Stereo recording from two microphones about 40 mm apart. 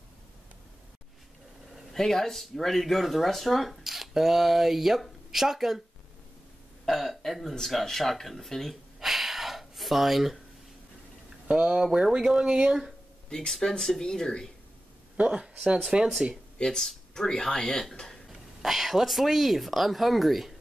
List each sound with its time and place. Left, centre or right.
2.0 s speech: centre
6.9 s speech: centre
9.0 s gasp: centre
11.4 s speech: right
11.7 s speech: centre
13.5 s speech: centre
15.1 s speech: right
16.5 s speech: centre
18.6 s speech: centre